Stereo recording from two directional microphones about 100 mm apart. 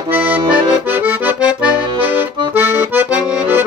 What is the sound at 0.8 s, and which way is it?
Accordion, 20° right (ahead or behind).